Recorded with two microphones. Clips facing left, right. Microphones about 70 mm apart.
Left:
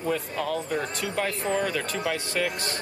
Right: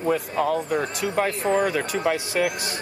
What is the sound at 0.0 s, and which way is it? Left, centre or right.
Speech, centre.